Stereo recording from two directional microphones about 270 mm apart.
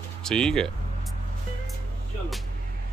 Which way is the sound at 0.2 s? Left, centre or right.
Centre.